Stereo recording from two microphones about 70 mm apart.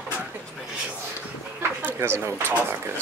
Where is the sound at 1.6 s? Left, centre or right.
Right.